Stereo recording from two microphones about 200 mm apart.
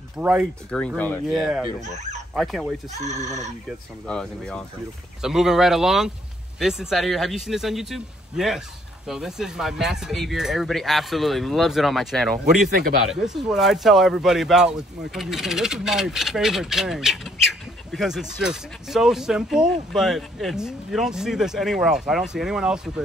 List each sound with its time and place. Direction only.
0.2 s speech: 10° right (ahead or behind)
0.7 s speech: 5° left (ahead or behind)
2.9 s speech: 35° right (ahead or behind)
3.6 s speech: 5° left (ahead or behind)
12.5 s speech: 45° right (ahead or behind)
13.1 s speech: centre (ahead or behind)